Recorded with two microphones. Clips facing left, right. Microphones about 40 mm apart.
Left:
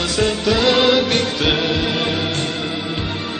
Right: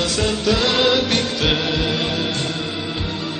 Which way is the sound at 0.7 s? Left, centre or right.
Left.